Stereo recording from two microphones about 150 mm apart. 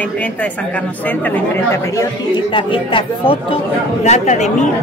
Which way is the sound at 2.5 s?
35° left (ahead or behind).